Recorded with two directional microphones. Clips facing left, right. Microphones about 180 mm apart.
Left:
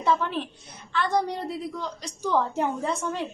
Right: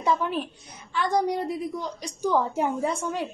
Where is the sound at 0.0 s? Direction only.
10° right (ahead or behind).